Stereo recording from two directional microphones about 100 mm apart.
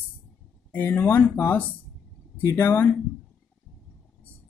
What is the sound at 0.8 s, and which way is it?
Speech, 25° left (ahead or behind).